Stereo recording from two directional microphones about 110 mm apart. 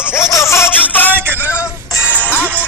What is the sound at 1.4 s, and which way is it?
Music, 25° left (ahead or behind).